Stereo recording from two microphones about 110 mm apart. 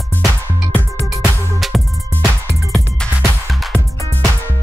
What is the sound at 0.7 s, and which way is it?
Music, 20° left (ahead or behind).